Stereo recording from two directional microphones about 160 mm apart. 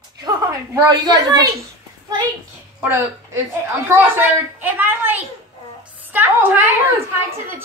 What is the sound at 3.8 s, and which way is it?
A woman's voice, 10° right (ahead or behind).